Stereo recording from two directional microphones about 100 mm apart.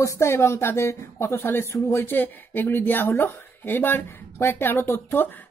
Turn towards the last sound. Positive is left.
turn(degrees=25)  # may be behind; listen again after turning